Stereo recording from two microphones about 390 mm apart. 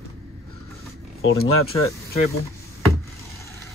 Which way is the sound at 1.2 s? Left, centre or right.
Left.